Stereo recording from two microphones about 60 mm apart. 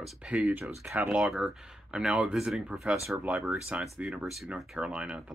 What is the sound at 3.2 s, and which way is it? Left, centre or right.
Speech, right.